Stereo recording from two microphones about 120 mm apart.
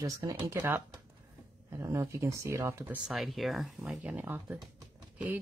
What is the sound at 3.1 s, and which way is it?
Speech, centre (ahead or behind).